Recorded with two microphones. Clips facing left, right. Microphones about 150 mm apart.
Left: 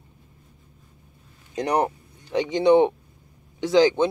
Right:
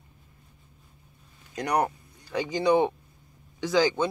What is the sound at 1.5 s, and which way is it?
Speech, 25° left (ahead or behind).